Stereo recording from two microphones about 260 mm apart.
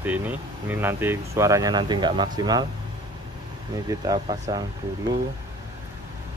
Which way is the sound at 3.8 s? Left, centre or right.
Centre.